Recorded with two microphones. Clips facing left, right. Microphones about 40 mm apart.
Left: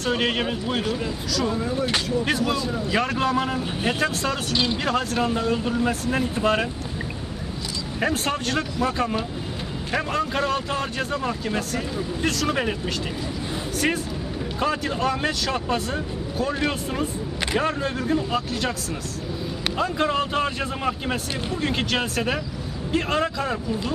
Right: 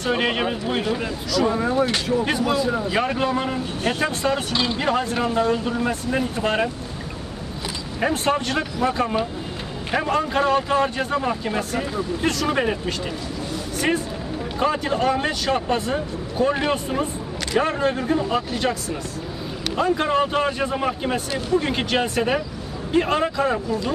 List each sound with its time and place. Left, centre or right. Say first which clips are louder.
0.0 s speech: right 2 dB; centre
1.6 s speech: right 5 dB; right
2.0 s speech: right 2 dB; centre
5.2 s speech: right 2 dB; centre
8.0 s speech: right 3 dB; centre
19.8 s speech: right 4 dB; centre